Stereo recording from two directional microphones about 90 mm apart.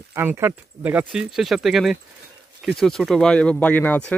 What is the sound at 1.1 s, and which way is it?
Speech, 5° right (ahead or behind).